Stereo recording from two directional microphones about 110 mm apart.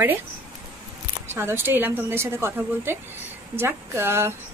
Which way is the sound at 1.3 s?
20° right (ahead or behind).